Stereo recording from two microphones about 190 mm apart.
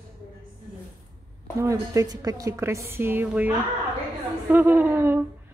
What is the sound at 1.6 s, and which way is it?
Speech, 15° right (ahead or behind).